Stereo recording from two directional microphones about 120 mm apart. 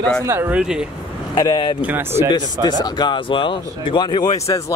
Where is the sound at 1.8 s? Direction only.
15° right (ahead or behind).